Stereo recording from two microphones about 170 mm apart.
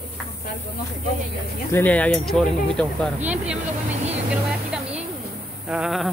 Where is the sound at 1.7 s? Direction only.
10° left (ahead or behind).